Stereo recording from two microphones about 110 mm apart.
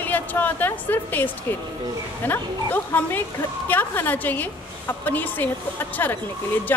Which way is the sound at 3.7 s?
15° left (ahead or behind).